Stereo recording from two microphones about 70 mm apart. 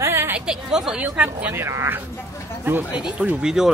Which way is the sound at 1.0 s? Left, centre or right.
Right.